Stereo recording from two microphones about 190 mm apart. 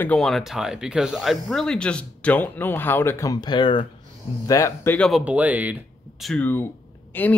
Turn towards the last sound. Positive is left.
turn(degrees=10)  # may be behind; listen again after turning